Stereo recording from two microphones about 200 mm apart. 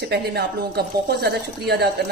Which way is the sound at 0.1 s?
55° right (ahead or behind).